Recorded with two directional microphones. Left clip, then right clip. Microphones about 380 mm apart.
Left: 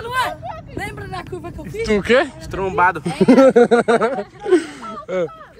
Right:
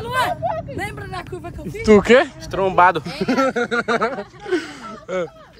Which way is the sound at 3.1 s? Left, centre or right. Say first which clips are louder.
Left 8 dB; centre.